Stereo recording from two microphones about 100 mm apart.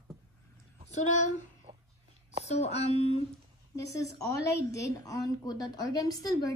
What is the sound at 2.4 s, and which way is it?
Speech, 90° left.